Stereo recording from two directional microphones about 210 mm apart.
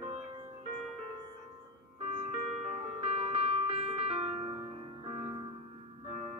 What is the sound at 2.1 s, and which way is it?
Music, 30° right (ahead or behind).